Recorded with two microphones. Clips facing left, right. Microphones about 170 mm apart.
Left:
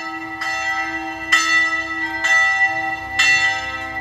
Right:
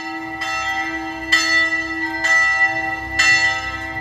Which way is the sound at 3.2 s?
40° right (ahead or behind).